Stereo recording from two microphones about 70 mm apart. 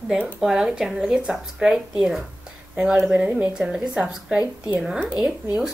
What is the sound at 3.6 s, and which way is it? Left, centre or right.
Speech, centre.